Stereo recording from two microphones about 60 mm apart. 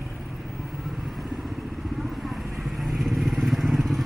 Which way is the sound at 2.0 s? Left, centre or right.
Centre.